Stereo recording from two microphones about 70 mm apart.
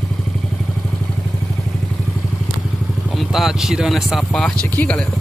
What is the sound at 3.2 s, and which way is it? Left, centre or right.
Speech, centre.